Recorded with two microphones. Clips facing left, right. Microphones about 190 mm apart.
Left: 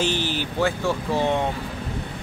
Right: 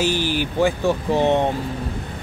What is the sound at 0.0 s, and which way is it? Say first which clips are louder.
Speech: right 3 dB; 10° right (ahead or behind).